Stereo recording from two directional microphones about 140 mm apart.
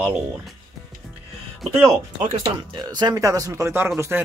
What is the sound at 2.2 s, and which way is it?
Speech, 35° right (ahead or behind).